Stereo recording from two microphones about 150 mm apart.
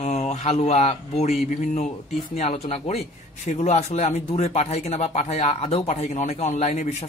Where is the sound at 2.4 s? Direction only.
45° left (ahead or behind).